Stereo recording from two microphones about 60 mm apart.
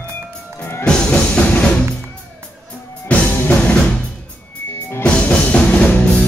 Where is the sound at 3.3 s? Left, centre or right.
Left.